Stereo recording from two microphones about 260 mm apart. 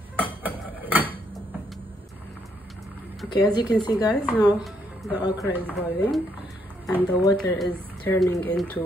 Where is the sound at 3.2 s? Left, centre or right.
Centre.